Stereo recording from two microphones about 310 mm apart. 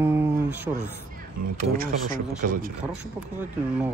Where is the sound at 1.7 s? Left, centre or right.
Right.